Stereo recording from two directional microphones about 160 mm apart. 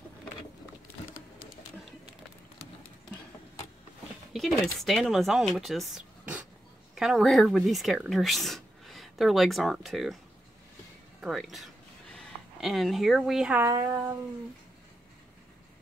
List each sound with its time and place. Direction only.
4.3 s speech: centre (ahead or behind)
11.1 s a sound: centre (ahead or behind)
13.7 s speech: 20° right (ahead or behind)